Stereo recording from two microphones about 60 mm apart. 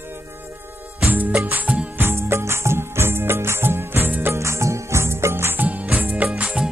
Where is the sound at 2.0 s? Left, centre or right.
Right.